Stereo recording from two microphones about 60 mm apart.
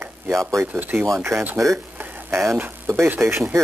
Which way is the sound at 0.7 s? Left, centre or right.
Right.